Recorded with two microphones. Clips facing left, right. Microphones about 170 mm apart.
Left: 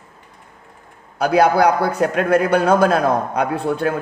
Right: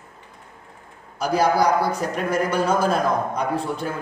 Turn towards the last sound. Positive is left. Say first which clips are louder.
# left 5 dB
turn(degrees=60)  # may be behind; listen again after turning